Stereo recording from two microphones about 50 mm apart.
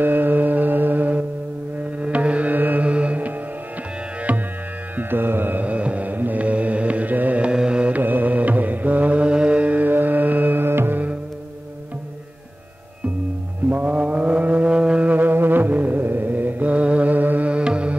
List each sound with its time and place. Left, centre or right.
0.0 s music: right
4.9 s music: right
7.5 s carnatic music: centre
7.9 s music: right
13.7 s mantra: right
15.0 s music: right
17.5 s music: right